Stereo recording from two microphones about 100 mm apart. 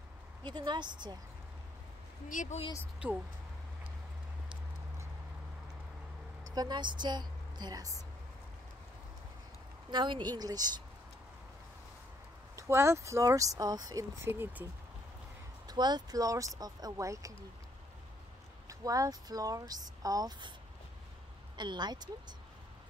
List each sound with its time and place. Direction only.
0.4 s a woman's voice: 50° right (ahead or behind)
3.0 s speech: 10° right (ahead or behind)
6.5 s a woman's voice: 45° right (ahead or behind)
9.8 s a woman's voice: 50° right (ahead or behind)
12.5 s speech: 30° right (ahead or behind)
14.2 s speech: 20° right (ahead or behind)
15.6 s speech: 45° right (ahead or behind)
18.7 s speech: 35° right (ahead or behind)
21.5 s a woman's voice: 45° right (ahead or behind)